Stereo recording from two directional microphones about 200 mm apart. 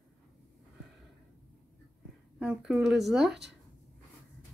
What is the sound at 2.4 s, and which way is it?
Speech, 5° right (ahead or behind).